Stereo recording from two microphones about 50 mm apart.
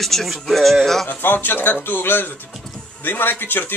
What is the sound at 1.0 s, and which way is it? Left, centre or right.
Speech, left.